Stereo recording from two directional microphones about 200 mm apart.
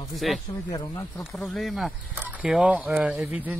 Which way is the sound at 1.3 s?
Centre (ahead or behind).